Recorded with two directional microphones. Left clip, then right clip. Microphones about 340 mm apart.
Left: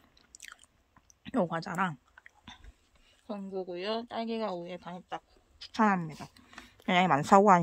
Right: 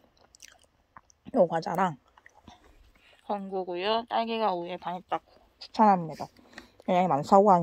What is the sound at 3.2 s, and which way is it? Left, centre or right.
A woman's voice, centre.